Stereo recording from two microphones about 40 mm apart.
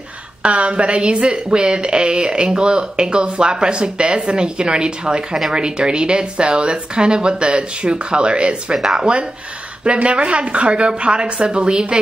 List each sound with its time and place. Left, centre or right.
0.4 s a woman's voice: right